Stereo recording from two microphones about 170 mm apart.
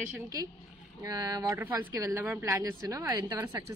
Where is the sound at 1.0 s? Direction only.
25° right (ahead or behind).